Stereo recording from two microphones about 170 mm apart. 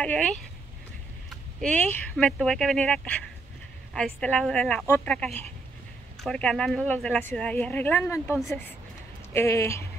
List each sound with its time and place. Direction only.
0.0 s speech: 10° left (ahead or behind)
1.6 s speech: 10° left (ahead or behind)